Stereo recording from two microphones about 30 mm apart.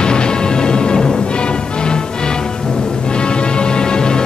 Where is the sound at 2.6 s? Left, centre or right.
Centre.